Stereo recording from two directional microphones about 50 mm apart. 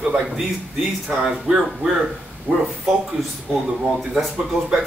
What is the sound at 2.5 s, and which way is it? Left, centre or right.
Speech, right.